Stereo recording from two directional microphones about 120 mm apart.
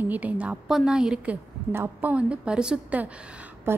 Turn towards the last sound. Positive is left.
turn(degrees=-20)  # may be behind; listen again after turning